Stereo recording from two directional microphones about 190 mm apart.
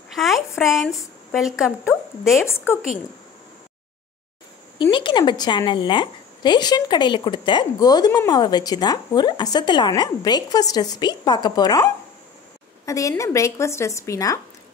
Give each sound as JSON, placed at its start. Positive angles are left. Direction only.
{"t": 0.1, "sound": "a woman's voice", "side_deg": 0}
{"t": 2.4, "sound": "a woman's voice", "side_deg": 15}
{"t": 4.9, "sound": "a woman's voice", "side_deg": 25}